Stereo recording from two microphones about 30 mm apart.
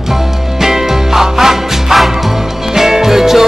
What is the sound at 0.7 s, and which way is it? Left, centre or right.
Music, centre.